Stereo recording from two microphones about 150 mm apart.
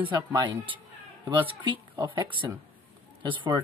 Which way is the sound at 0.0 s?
30° right (ahead or behind).